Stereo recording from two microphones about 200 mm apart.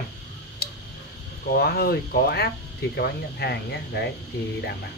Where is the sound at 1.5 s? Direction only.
50° left (ahead or behind).